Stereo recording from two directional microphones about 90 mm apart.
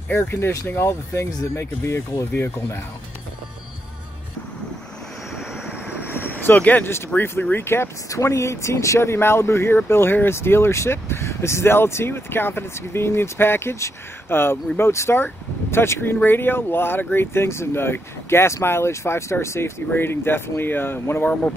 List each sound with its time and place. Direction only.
0.1 s speech: 30° left (ahead or behind)
5.7 s vehicle: 20° left (ahead or behind)
7.2 s speech: 25° left (ahead or behind)